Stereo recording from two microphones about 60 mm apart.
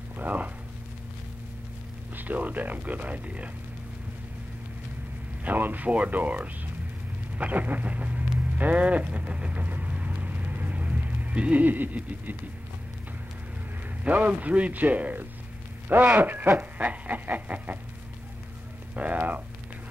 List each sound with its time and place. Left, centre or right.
0.2 s speech: right
2.1 s speech: right
5.4 s speech: right
7.3 s livestock: right
14.0 s speech: right
18.9 s speech: right